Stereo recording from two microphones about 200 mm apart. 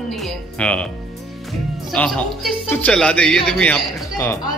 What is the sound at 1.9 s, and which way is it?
Speech, 5° left (ahead or behind).